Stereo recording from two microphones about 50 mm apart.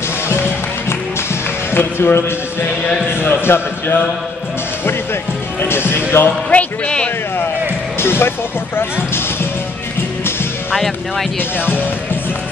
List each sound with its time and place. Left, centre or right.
0.3 s music: left
1.7 s speech: left
3.1 s a sound: left
5.6 s speech: left
6.5 s speech: left
8.0 s speech: left